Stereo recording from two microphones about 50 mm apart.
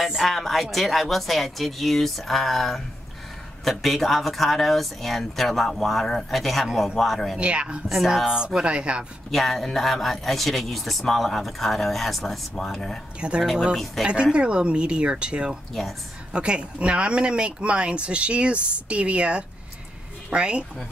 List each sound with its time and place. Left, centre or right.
0.1 s a man's voice: centre
7.3 s speech: right
7.9 s a man's voice: centre
8.5 s speech: right
9.3 s a man's voice: centre
13.2 s speech: right
15.8 s a man's voice: centre
16.3 s speech: right